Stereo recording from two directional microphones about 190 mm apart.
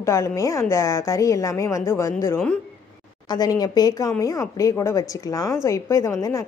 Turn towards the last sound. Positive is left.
turn(degrees=15)  # may be behind; listen again after turning